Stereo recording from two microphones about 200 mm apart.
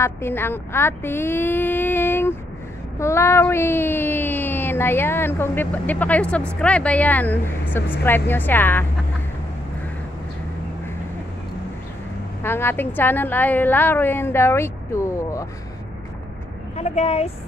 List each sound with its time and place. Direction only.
0.0 s speech: 10° left (ahead or behind)
12.4 s speech: 10° left (ahead or behind)
16.7 s a woman's voice: 30° left (ahead or behind)